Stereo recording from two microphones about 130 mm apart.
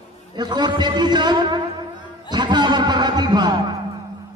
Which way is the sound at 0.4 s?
35° right (ahead or behind).